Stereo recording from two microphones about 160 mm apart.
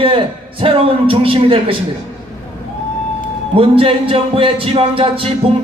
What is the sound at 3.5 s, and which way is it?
Speech, 35° right (ahead or behind).